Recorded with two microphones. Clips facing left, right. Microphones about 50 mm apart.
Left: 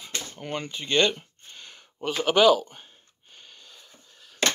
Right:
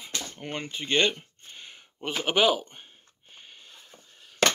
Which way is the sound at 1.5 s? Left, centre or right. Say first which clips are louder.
Even; centre.